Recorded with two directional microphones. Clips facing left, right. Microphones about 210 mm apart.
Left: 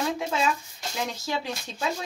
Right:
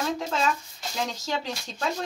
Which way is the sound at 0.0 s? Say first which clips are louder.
Even; 5° left (ahead or behind).